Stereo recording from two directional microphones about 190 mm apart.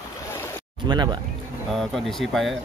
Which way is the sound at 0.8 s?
25° right (ahead or behind).